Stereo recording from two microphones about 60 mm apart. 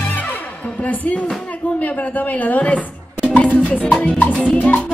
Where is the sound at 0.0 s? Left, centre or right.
Left.